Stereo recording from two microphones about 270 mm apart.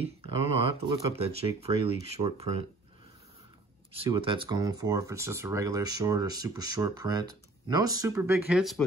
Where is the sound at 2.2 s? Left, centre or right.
Right.